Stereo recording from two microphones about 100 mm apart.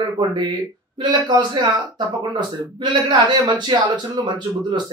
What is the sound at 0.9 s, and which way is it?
A man's voice, 50° right (ahead or behind).